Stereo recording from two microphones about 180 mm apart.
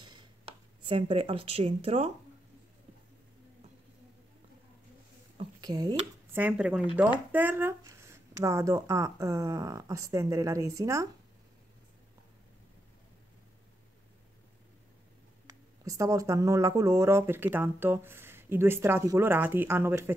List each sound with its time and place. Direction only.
0.8 s speech: 30° right (ahead or behind)
5.4 s a sound: 20° right (ahead or behind)
6.3 s speech: 10° right (ahead or behind)
15.8 s speech: 20° right (ahead or behind)